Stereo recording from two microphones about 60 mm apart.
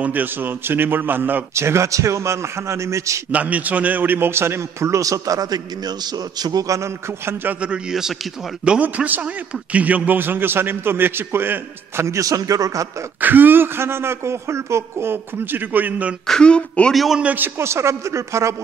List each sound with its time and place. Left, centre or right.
0.0 s a man's voice: right
1.5 s speech: right
3.3 s speech: right
6.4 s a sound: right
8.8 s a man's voice: right
12.0 s speech: right
13.2 s speech: right
15.7 s a man's voice: right
16.3 s speech: centre
16.9 s a man's voice: centre
17.2 s a man's voice: right
17.6 s speech: right